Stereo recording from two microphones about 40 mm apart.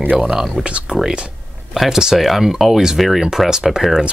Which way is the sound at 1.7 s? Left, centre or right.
Centre.